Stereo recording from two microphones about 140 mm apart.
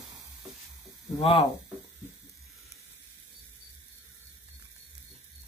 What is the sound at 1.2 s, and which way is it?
Speech, 45° left (ahead or behind).